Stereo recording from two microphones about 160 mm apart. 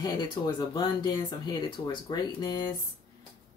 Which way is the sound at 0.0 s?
25° left (ahead or behind).